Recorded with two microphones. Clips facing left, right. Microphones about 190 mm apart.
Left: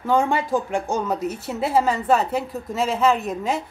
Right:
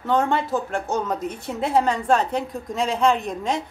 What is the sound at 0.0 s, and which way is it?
Speech, 10° left (ahead or behind).